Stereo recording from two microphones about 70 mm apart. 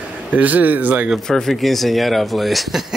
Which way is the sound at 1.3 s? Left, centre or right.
Centre.